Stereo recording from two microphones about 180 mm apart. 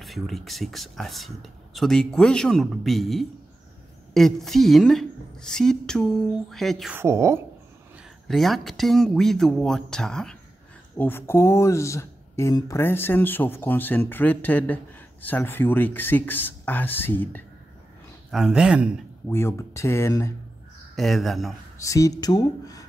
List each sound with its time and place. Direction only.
0.0 s speech: centre (ahead or behind)
7.0 s speech: 15° right (ahead or behind)
8.3 s speech: centre (ahead or behind)
18.3 s speech: 5° right (ahead or behind)
19.2 s speech: 15° left (ahead or behind)
20.9 s speech: centre (ahead or behind)
21.7 s speech: 15° left (ahead or behind)